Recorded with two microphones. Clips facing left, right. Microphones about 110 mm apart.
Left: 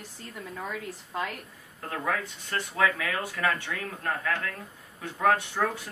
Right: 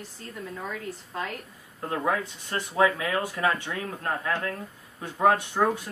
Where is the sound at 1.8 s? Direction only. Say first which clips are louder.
Right 4 dB; 20° right (ahead or behind).